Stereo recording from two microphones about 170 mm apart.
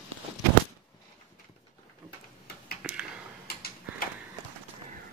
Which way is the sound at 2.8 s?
5° right (ahead or behind).